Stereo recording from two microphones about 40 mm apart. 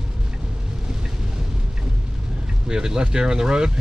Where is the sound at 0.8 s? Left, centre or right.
Centre.